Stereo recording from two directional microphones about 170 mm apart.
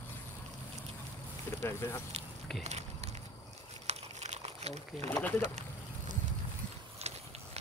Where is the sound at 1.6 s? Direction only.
15° left (ahead or behind).